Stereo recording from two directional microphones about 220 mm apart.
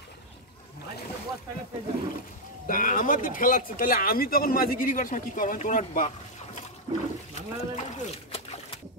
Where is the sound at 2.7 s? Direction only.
35° left (ahead or behind).